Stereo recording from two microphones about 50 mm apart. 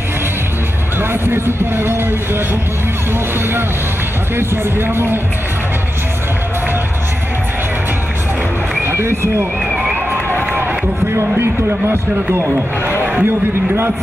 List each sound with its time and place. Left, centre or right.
1.2 s speech: right
4.4 s speech: right
8.8 s speech: right
11.9 s speech: right
13.0 s a sound: right